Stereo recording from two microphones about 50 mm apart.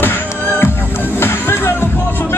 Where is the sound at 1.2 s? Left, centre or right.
Left.